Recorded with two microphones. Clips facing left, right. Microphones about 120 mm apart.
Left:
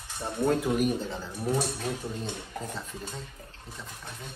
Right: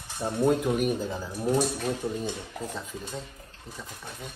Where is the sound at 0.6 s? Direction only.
Centre (ahead or behind).